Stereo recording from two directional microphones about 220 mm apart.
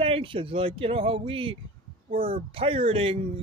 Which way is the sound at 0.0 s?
25° right (ahead or behind).